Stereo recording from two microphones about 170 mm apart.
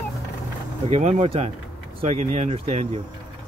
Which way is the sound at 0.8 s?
40° right (ahead or behind).